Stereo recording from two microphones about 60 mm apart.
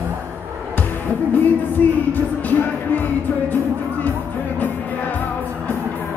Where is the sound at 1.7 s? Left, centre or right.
Left.